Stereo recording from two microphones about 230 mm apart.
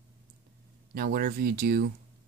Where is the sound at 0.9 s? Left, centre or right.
Right.